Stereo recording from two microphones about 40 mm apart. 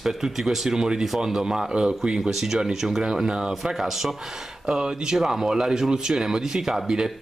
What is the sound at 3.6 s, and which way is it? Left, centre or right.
Speech, centre.